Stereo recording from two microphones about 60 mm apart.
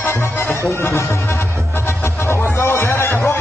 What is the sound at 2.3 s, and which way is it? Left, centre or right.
Music, left.